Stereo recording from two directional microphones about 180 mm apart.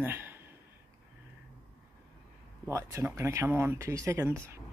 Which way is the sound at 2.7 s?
15° right (ahead or behind).